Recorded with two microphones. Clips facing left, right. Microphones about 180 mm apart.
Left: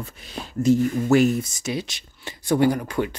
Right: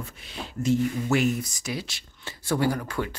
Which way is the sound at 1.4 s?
25° left (ahead or behind).